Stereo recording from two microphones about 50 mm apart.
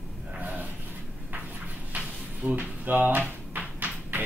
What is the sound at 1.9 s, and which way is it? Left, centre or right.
Drawer open or close, right.